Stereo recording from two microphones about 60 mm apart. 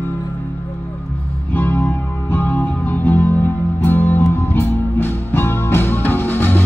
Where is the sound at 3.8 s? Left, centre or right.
Left.